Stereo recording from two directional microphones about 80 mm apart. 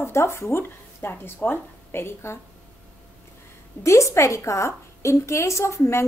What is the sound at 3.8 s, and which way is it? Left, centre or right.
A woman's voice, left.